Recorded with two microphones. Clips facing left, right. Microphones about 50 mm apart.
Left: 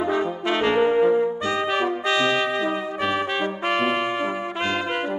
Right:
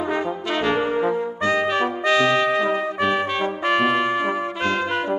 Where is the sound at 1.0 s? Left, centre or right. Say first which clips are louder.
Left 2 dB; right.